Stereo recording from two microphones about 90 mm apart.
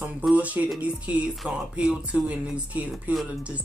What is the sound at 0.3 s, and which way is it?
Speech, 15° right (ahead or behind).